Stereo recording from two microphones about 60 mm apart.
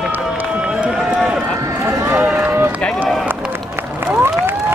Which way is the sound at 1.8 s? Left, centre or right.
Right.